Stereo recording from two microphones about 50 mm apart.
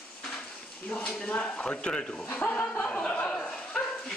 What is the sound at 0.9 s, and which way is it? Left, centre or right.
A man's voice, left.